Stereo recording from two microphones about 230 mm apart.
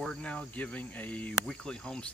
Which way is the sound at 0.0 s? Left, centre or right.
Centre.